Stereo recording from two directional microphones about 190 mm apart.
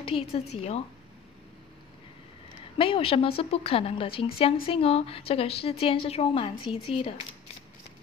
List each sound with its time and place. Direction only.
0.0 s a woman's voice: 30° left (ahead or behind)
2.8 s a woman's voice: 30° left (ahead or behind)